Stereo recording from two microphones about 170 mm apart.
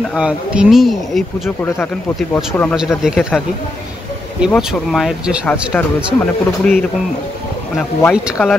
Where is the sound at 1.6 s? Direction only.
15° left (ahead or behind).